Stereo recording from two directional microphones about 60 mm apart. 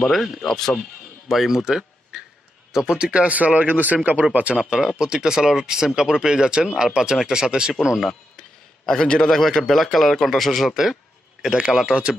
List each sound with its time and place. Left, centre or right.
0.0 s speech: centre; by 4.6 s right
4.6 s speech: centre
8.0 s a man's voice: centre
11.8 s speech: centre